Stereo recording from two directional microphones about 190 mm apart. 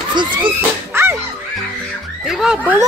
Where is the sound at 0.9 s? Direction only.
15° right (ahead or behind).